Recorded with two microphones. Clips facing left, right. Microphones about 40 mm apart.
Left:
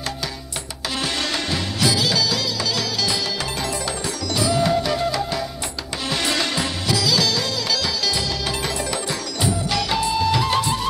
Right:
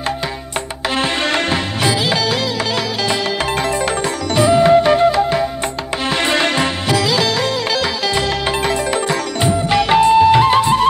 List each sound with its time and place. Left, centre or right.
0.9 s music: right
4.4 s music: right